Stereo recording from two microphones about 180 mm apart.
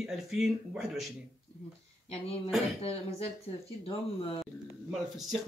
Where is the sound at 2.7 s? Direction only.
35° left (ahead or behind).